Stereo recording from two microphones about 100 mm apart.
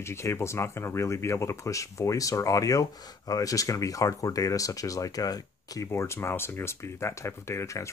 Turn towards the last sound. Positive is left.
turn(degrees=30)  # may be behind; listen again after turning